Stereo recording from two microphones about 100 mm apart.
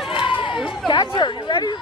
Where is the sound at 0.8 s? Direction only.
50° left (ahead or behind).